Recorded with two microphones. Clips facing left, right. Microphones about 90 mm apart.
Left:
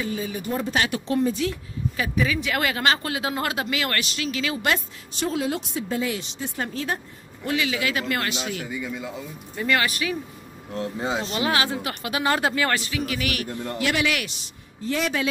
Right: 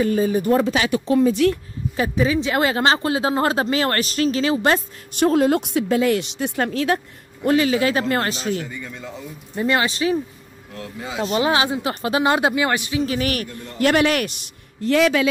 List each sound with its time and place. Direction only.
0.0 s speech: 45° right (ahead or behind)
1.3 s speech: 60° right (ahead or behind)
2.0 s speech: 30° right (ahead or behind)
5.1 s a woman's voice: 50° right (ahead or behind); by 7.0 s 85° right
7.4 s speech: 40° right (ahead or behind)
8.6 s a man's voice: 5° left (ahead or behind)
9.6 s speech: 25° right (ahead or behind)
10.7 s speech: 30° left (ahead or behind)
11.2 s speech: 30° right (ahead or behind)
13.0 s speech: 35° right (ahead or behind); by 15.2 s 85° right